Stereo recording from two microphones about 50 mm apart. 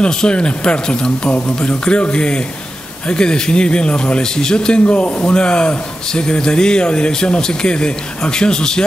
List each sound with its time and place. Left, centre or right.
0.0 s speech: centre